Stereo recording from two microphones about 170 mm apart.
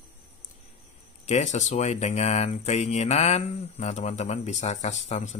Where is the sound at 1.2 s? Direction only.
40° left (ahead or behind).